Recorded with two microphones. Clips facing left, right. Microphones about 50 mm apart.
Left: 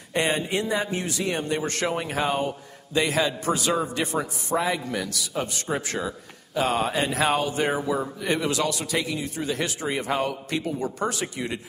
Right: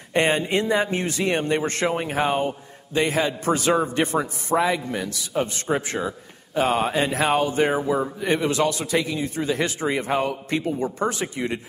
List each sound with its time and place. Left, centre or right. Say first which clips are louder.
0.1 s a man's voice: right 4 dB; right
1.7 s a man's voice: right 3 dB; right
6.0 s a man's voice: right 2 dB; right